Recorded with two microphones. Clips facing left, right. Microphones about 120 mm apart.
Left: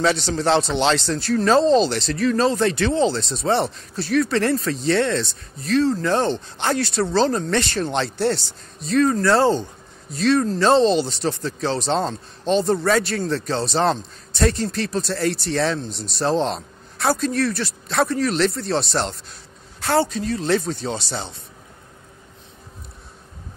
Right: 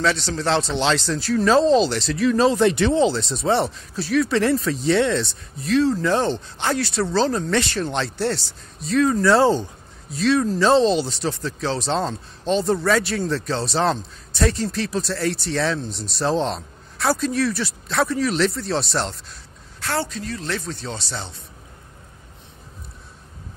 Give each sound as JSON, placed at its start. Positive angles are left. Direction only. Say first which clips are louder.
{"t": 0.0, "sound": "speech", "louder": "left 2 dB", "side_deg": 5}
{"t": 19.8, "sound": "a man's voice", "louder": "left 6 dB", "side_deg": 25}